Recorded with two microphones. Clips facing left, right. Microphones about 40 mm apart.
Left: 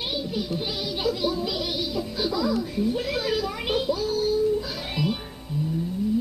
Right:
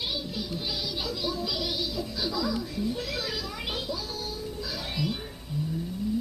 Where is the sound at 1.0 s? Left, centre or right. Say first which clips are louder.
Left 9 dB; centre.